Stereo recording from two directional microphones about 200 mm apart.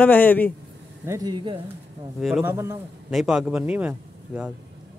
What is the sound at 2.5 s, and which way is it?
Speech, 15° right (ahead or behind).